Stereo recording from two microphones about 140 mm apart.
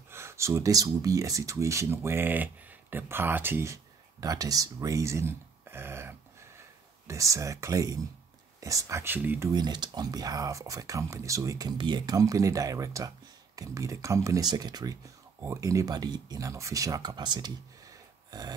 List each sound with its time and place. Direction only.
0.1 s speech: 20° right (ahead or behind)
9.5 s speech: 30° right (ahead or behind)